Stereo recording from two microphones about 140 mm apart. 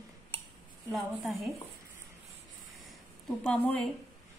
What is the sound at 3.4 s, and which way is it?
Speech, 10° left (ahead or behind).